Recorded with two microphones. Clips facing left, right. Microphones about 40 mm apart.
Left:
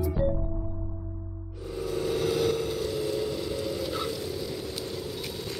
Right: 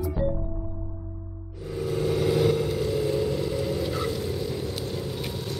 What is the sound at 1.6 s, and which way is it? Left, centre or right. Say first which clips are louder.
Vehicle: right 3 dB; centre.